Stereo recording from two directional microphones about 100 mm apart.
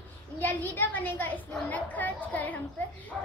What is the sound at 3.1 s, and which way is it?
Bow-wow, 10° right (ahead or behind).